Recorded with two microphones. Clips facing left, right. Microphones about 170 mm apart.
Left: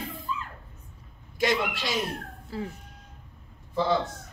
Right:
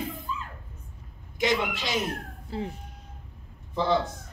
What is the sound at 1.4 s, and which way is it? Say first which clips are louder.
Speech: even; 20° right (ahead or behind).